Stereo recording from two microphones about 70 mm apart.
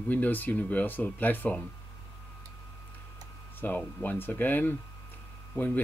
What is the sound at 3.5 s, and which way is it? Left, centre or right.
Speech, left.